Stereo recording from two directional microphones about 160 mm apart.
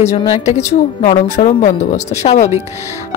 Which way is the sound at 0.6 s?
20° left (ahead or behind).